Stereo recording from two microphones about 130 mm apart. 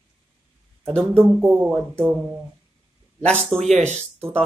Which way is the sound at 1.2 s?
20° right (ahead or behind).